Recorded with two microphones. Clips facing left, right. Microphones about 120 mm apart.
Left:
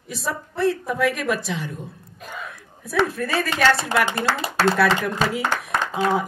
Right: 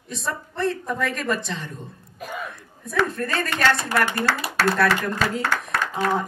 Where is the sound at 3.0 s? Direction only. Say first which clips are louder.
Left 2 dB; 5° left (ahead or behind).